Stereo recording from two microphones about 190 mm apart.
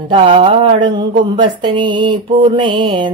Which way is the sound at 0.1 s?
30° right (ahead or behind).